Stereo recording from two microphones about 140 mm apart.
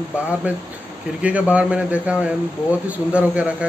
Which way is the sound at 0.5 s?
10° right (ahead or behind).